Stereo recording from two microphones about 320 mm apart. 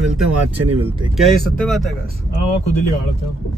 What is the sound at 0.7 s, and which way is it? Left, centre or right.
Speech, centre.